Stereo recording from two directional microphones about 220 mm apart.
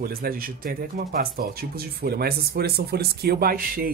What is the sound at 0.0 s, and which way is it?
Speech, 40° right (ahead or behind).